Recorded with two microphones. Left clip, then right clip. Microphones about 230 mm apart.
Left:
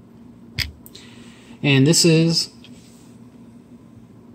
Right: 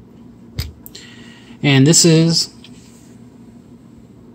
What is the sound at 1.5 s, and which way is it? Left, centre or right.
Speech, centre.